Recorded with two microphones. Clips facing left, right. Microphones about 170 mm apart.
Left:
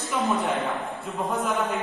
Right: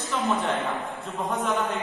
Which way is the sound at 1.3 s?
Centre (ahead or behind).